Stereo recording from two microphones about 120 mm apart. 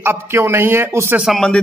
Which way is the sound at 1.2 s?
5° left (ahead or behind).